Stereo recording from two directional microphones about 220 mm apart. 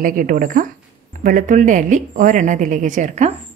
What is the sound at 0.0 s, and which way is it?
A woman's voice, 40° right (ahead or behind).